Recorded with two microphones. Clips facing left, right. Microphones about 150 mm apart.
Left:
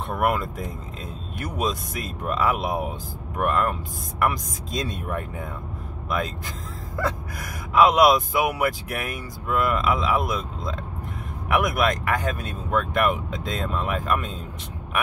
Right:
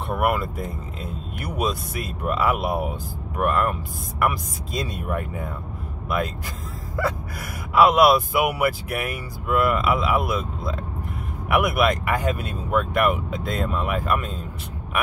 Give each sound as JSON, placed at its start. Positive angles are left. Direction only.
{"t": 0.1, "sound": "speech", "side_deg": -5}